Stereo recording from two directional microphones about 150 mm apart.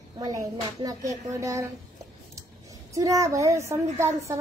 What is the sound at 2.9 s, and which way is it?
Speech, 20° right (ahead or behind).